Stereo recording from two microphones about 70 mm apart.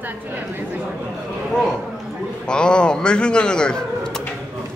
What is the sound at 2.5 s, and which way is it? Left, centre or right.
Speech, centre.